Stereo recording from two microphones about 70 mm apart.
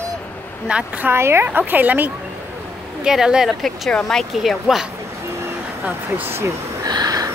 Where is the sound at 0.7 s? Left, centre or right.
Centre.